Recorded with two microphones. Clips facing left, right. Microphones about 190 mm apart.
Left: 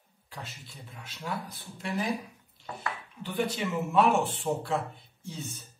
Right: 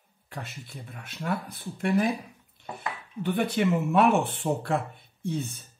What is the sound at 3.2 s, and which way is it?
Speech, 60° right (ahead or behind).